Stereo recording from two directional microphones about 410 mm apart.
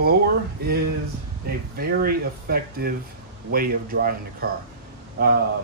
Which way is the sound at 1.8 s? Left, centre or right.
Right.